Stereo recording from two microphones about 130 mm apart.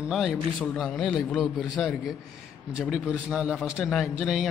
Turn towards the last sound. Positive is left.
turn(degrees=0)  # may be behind; listen again after turning